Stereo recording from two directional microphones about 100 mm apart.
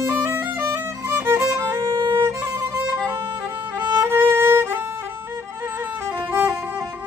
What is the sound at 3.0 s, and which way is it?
Violin, 20° right (ahead or behind).